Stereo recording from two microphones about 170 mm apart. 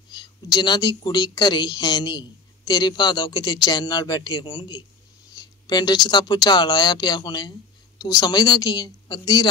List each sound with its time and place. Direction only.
0.1 s a woman's voice: 25° left (ahead or behind)
5.3 s a sound: 25° left (ahead or behind)
6.0 s a woman's voice: 25° left (ahead or behind)